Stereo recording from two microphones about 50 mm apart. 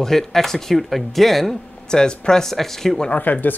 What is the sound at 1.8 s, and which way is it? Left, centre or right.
Speech, centre.